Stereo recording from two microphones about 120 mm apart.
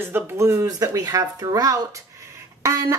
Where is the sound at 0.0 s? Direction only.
20° right (ahead or behind).